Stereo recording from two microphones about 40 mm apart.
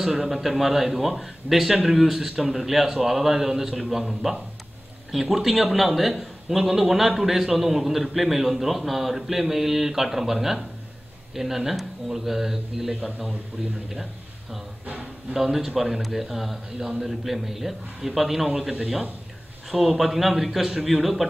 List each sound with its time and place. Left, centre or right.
0.1 s a man's voice: centre
15.5 s a man's voice: centre
17.2 s a man's voice: centre